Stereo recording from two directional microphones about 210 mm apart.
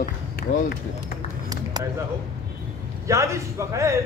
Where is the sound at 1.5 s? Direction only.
15° right (ahead or behind).